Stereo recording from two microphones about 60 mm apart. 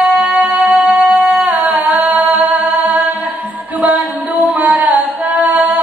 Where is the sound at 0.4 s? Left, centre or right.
Right.